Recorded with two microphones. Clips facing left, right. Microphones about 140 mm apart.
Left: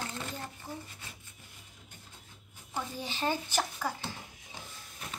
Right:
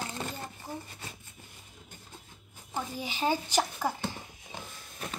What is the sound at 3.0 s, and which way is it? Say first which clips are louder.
Speech: right 3 dB; 10° right (ahead or behind).